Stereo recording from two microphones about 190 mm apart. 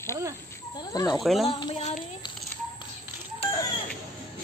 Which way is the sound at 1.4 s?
25° left (ahead or behind).